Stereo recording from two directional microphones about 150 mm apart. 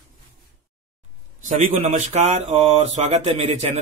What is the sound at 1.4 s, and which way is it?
A man's voice, 55° right (ahead or behind).